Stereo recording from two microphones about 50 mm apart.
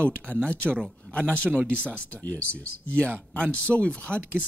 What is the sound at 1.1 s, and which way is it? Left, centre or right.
Speech, centre.